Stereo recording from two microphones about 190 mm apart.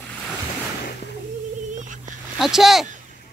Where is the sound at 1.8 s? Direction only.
40° right (ahead or behind).